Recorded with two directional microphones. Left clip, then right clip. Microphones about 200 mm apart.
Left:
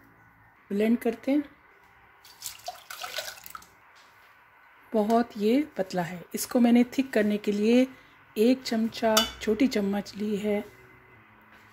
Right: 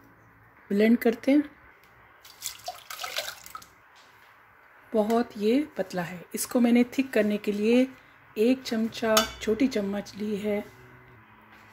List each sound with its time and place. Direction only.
0.7 s speech: 10° right (ahead or behind)
5.1 s speech: 15° left (ahead or behind)
8.4 s cutlery: 20° left (ahead or behind)